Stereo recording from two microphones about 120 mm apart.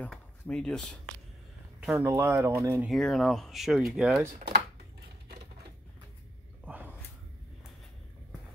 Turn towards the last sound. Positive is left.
turn(degrees=-15)  # may be behind; listen again after turning